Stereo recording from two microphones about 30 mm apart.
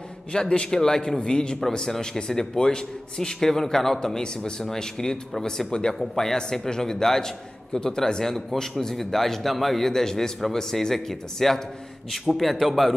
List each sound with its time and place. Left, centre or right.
0.3 s a man's voice: left
5.9 s a man's voice: centre